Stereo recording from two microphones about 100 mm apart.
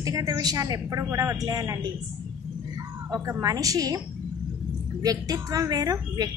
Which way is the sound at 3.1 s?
35° right (ahead or behind).